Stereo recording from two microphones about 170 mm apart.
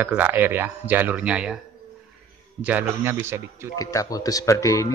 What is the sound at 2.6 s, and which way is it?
Speech, 10° right (ahead or behind).